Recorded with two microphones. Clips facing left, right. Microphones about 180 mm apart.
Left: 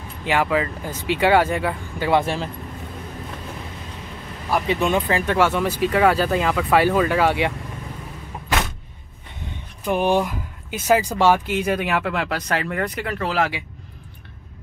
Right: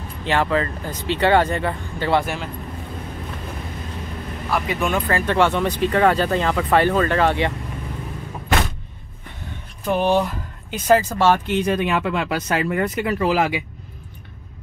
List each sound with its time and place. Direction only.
0.2 s speech: 10° left (ahead or behind)
2.2 s speech: 35° left (ahead or behind)
4.6 s speech: 20° left (ahead or behind)
9.8 s speech: 10° left (ahead or behind); by 13.5 s 10° right (ahead or behind)